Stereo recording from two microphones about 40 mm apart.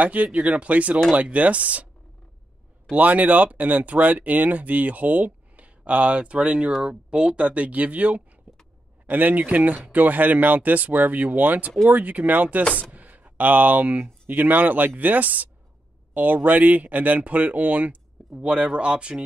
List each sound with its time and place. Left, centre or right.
0.0 s speech: right
2.9 s speech: right
12.9 s a sound: right
14.2 s speech: right
18.3 s speech: right